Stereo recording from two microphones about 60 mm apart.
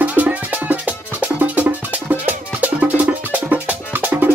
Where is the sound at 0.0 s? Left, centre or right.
Right.